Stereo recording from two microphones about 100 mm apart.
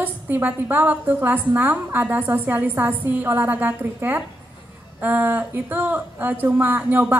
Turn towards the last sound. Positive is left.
turn(degrees=-15)  # may be behind; listen again after turning